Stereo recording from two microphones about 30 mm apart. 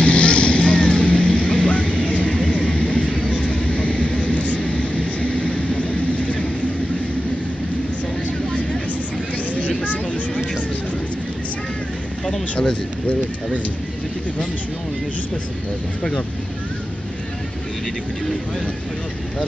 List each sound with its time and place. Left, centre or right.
0.0 s vehicle: left
2.5 s music: left
2.9 s vehicle: left
12.3 s a sound: left